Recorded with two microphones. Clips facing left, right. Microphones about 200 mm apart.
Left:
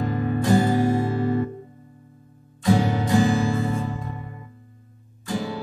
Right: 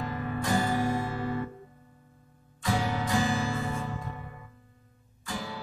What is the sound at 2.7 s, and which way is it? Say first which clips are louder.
Music: left 9 dB; 35° left (ahead or behind).